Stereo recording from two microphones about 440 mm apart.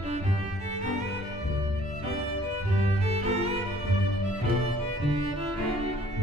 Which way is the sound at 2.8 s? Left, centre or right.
Centre.